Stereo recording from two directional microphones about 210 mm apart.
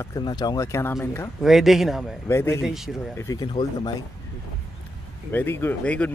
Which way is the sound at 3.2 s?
20° left (ahead or behind).